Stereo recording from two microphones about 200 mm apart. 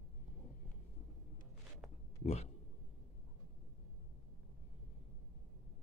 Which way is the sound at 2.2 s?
30° left (ahead or behind).